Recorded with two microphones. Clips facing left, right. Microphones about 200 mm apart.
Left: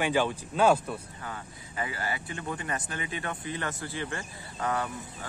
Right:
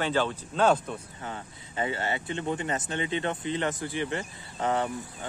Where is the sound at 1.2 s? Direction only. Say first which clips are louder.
Right 2 dB; 25° right (ahead or behind).